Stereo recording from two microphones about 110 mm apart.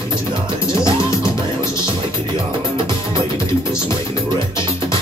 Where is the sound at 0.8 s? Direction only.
30° left (ahead or behind).